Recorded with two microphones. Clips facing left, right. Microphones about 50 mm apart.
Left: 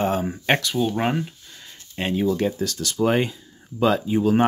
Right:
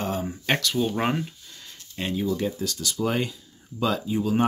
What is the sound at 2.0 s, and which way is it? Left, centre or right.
Speech, left.